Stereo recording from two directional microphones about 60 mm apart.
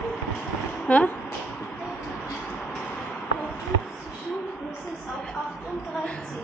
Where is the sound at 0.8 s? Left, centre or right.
Left.